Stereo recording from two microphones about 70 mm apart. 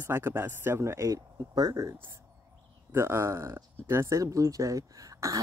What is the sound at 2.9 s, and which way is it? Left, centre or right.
Speech, right.